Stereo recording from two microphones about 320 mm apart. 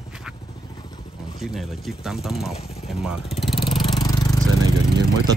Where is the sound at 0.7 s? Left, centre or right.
Centre.